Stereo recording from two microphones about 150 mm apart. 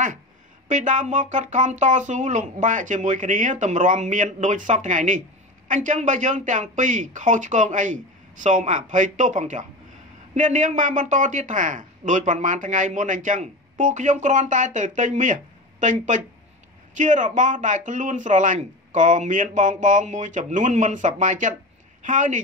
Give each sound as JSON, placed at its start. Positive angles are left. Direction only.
{"t": 0.7, "sound": "a man's voice", "side_deg": -55}